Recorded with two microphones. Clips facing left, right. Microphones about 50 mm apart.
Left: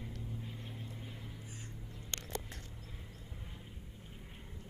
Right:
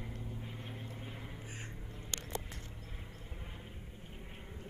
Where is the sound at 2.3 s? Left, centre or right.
Right.